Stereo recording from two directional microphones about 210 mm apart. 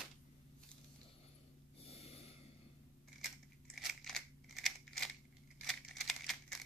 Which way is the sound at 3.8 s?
Centre (ahead or behind).